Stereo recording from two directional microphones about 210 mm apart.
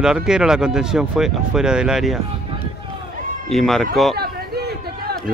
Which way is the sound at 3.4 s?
Centre (ahead or behind).